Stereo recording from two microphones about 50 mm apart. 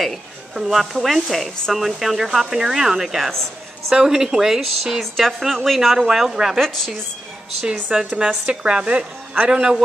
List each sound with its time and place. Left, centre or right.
0.0 s speech: centre
5.1 s speech: centre
6.6 s speech: centre
7.6 s a woman's voice: centre
9.5 s speech: centre